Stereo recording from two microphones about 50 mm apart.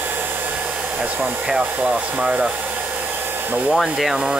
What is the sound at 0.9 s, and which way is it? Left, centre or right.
Speech, right.